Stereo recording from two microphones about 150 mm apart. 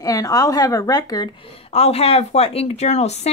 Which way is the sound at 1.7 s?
45° left (ahead or behind).